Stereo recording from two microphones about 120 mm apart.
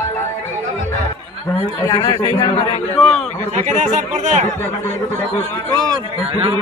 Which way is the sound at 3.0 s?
Centre (ahead or behind).